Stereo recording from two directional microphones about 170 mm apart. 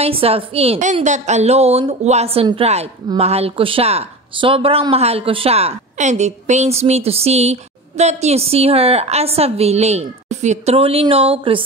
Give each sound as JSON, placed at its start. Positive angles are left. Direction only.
{"t": 0.0, "sound": "a woman's voice", "side_deg": -35}